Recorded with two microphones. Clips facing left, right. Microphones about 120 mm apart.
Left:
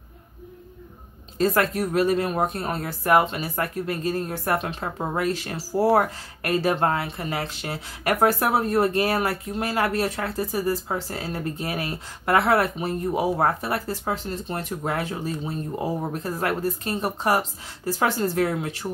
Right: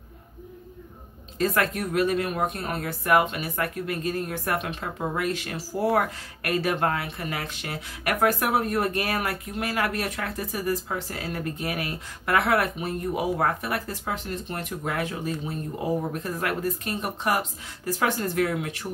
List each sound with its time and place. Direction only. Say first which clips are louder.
1.4 s speech: left 3 dB; 35° left (ahead or behind)